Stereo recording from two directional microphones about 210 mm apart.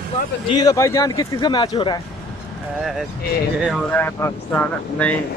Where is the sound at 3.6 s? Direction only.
5° left (ahead or behind).